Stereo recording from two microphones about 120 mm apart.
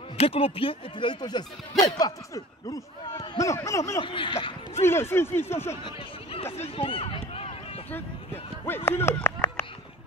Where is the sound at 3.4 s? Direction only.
25° left (ahead or behind).